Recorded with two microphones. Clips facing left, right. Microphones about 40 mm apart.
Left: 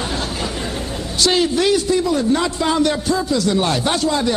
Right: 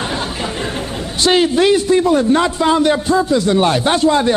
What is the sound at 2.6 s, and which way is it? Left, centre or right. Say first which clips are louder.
A man's voice: right 4 dB; centre.